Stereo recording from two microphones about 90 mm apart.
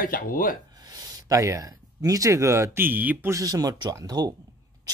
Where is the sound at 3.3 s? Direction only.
40° right (ahead or behind).